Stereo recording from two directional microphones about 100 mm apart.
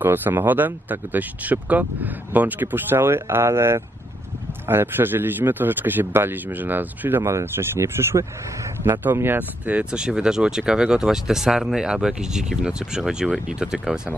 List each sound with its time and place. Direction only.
0.0 s speech: 20° right (ahead or behind)